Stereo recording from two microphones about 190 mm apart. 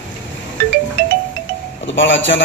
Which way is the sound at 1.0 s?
60° right (ahead or behind).